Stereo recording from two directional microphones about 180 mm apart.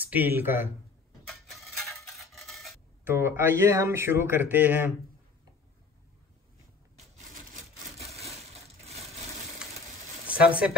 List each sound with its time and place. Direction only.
0.1 s speech: 10° right (ahead or behind)
1.2 s a sound: centre (ahead or behind)
3.1 s speech: 15° right (ahead or behind)
10.2 s speech: 5° right (ahead or behind)